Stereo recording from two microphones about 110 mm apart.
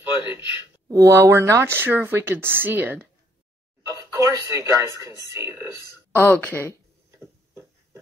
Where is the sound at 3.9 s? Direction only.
30° right (ahead or behind).